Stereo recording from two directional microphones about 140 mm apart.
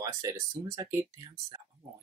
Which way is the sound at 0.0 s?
25° right (ahead or behind).